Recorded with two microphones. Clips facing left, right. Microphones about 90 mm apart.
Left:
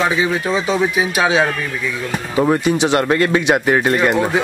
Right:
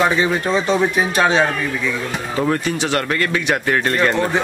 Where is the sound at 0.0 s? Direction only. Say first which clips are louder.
Even; 5° left (ahead or behind).